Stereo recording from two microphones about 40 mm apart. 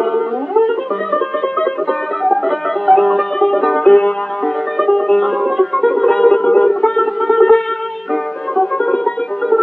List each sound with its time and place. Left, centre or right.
0.0 s music: centre
2.9 s music: centre
3.3 s music: centre
3.8 s music: left
4.7 s music: centre
6.4 s music: left
6.7 s music: left
7.2 s music: centre
8.8 s music: left